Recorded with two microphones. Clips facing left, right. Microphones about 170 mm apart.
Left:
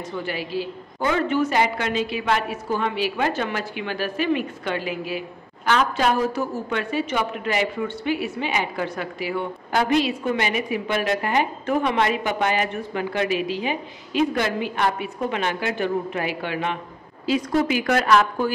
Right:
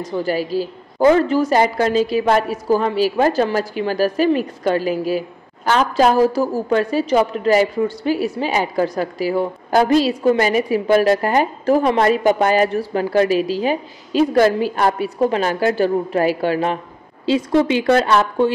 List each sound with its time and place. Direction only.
0.0 s a woman's voice: 40° right (ahead or behind)
17.3 s speech: 25° right (ahead or behind)